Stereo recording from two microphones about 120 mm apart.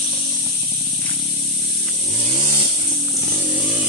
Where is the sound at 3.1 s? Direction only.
20° right (ahead or behind).